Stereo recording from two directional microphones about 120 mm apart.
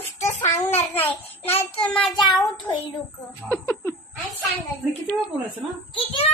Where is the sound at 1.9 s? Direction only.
Centre (ahead or behind).